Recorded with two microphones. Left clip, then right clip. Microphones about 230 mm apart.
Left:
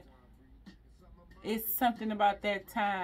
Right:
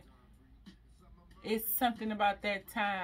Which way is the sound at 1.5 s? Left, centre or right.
Centre.